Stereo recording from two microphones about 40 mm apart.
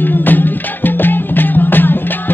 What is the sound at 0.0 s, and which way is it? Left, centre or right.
Music, left.